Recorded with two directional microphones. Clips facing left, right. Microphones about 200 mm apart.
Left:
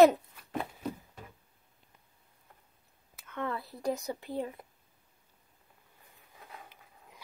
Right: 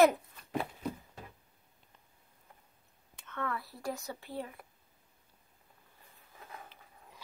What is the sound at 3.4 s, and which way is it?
A woman's voice, 20° left (ahead or behind).